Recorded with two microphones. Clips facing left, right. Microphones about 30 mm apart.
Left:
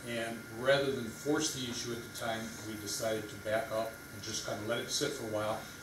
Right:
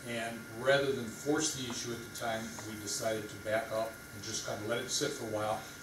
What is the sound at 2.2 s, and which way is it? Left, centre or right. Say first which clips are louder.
A man's voice: right 1 dB; centre.